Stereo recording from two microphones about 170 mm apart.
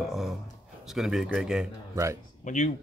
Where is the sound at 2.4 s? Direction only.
45° left (ahead or behind).